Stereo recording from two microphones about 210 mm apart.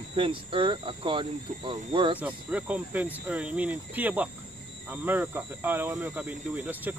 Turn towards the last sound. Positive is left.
turn(degrees=-10)  # may be behind; listen again after turning